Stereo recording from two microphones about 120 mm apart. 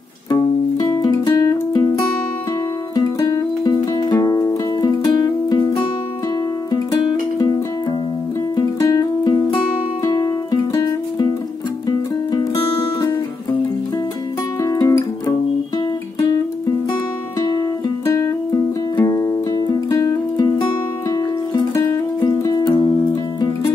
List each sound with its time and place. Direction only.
0.3 s music: 35° left (ahead or behind)
3.0 s music: 35° left (ahead or behind)
8.5 s music: 30° left (ahead or behind)
12.3 s music: 35° left (ahead or behind)
14.6 s music: 30° left (ahead or behind)
17.4 s music: 35° left (ahead or behind)
22.4 s music: 30° left (ahead or behind)